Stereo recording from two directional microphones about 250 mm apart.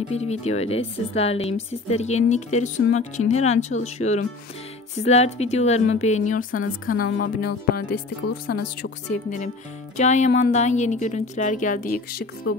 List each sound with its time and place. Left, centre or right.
0.1 s speech: left
6.9 s speech: left